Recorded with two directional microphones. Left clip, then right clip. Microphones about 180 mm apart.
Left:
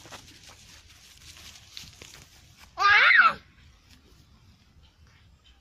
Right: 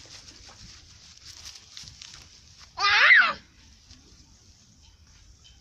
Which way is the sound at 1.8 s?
Centre (ahead or behind).